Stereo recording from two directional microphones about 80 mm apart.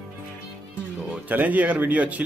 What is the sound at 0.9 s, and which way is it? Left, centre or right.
Speech, centre.